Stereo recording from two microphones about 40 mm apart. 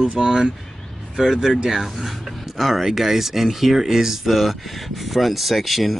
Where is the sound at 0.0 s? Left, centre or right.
Right.